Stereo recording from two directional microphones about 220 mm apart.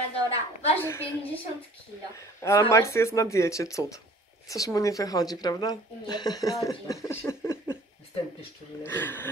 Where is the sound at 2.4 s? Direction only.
15° left (ahead or behind).